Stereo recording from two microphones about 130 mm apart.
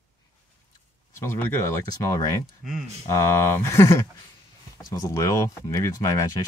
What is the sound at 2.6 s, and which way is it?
Speech, centre (ahead or behind).